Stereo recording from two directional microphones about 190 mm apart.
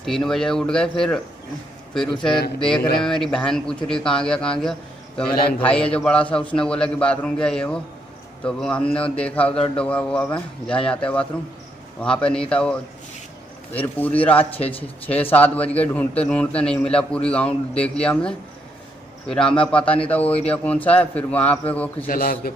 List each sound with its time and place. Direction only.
0.0 s a man's voice: centre (ahead or behind)
13.7 s a man's voice: 10° left (ahead or behind)
22.0 s a man's voice: 50° left (ahead or behind)